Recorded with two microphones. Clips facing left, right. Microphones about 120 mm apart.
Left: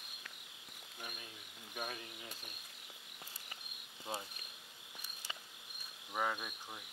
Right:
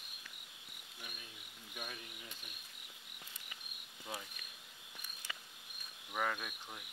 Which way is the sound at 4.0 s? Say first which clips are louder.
Left 3 dB; 30° left (ahead or behind).